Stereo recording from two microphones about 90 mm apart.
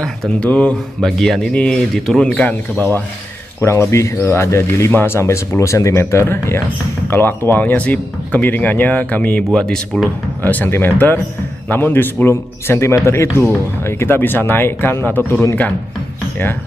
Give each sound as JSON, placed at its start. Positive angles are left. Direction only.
{"t": 0.0, "sound": "speech", "side_deg": 10}
{"t": 3.6, "sound": "speech", "side_deg": 30}
{"t": 10.4, "sound": "speech", "side_deg": 20}